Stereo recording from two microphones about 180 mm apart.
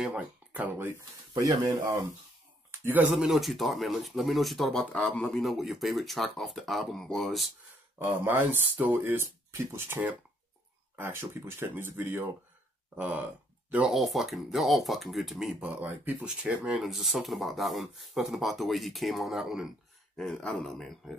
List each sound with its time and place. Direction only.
0.0 s speech: 10° right (ahead or behind)
8.0 s speech: 10° right (ahead or behind)